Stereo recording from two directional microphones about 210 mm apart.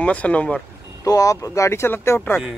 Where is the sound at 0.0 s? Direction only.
5° left (ahead or behind).